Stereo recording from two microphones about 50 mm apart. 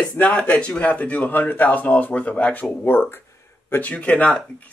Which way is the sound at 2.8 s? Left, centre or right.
Left.